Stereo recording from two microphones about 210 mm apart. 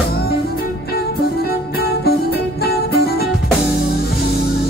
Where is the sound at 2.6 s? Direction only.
45° left (ahead or behind).